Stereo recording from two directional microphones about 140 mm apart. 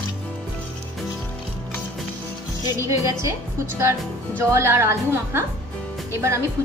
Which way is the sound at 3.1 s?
25° right (ahead or behind).